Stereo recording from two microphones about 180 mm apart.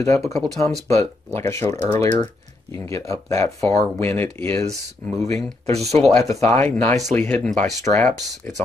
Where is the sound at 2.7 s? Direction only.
15° left (ahead or behind).